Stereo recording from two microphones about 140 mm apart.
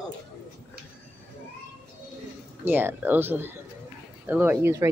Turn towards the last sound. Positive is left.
turn(degrees=-20)  # may be behind; listen again after turning